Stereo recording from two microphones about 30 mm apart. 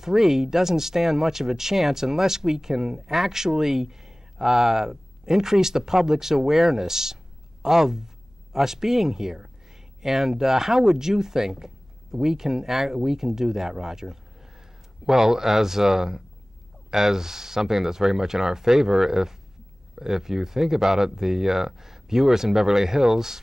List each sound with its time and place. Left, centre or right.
0.0 s speech: centre